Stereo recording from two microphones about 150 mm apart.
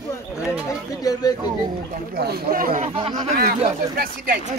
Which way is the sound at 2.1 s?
90° right.